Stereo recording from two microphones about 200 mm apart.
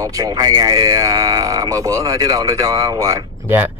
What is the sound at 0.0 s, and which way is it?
Speech, 15° right (ahead or behind).